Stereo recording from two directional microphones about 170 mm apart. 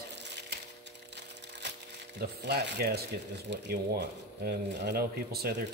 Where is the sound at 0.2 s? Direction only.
90° right.